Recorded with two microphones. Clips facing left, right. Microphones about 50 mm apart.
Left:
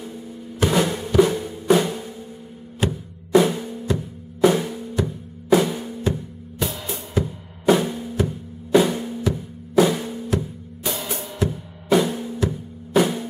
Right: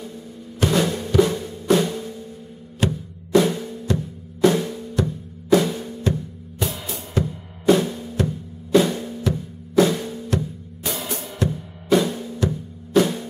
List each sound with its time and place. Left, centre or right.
0.6 s drum: centre
2.8 s music: centre
3.5 s music: left
3.8 s music: centre
6.6 s music: centre
8.3 s drum: centre
9.2 s music: centre
10.3 s music: centre
12.0 s music: centre